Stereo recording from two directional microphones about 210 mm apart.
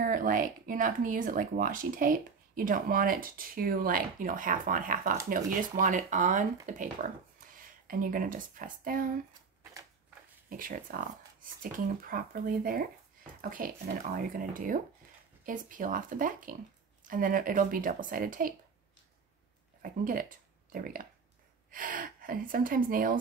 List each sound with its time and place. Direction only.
0.0 s speech: 40° right (ahead or behind)
10.5 s speech: 40° right (ahead or behind)
19.8 s speech: 40° right (ahead or behind)